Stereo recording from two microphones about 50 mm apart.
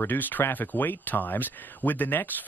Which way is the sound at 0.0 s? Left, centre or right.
Left.